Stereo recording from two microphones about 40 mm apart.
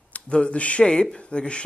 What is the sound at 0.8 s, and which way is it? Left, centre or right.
Speech, left.